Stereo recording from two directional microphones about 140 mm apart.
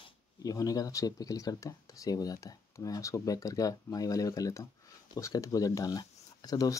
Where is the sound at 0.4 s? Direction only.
25° left (ahead or behind).